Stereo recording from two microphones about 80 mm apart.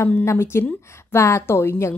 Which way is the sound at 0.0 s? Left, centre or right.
Left.